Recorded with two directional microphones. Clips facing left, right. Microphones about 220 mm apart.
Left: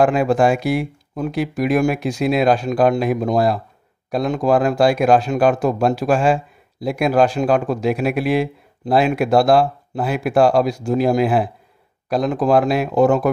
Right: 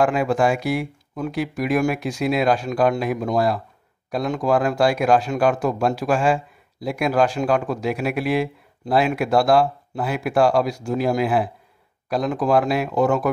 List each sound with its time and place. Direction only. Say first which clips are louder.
0.0 s speech: left 4 dB; 30° left (ahead or behind)